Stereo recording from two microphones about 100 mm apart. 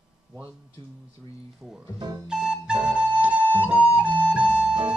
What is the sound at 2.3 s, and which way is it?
Flute, 10° right (ahead or behind).